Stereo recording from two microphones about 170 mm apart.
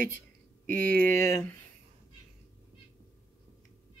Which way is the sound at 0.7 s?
10° left (ahead or behind).